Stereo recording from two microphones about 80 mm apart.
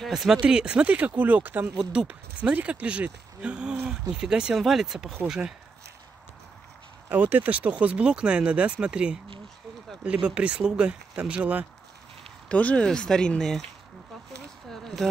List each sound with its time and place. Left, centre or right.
0.0 s speech: centre
0.4 s speech: centre
1.8 s speech: centre
7.1 s speech: right
12.4 s speech: centre
14.7 s a sound: centre